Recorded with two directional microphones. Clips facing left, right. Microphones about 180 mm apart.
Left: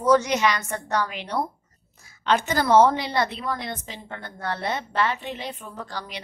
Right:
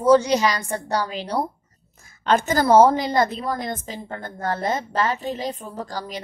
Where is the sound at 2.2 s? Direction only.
45° right (ahead or behind).